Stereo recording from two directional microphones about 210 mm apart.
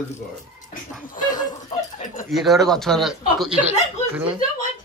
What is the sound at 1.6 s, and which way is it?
Chuckle, 35° left (ahead or behind).